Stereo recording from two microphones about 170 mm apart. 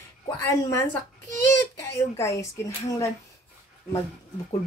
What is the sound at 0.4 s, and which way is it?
Speech, 15° left (ahead or behind).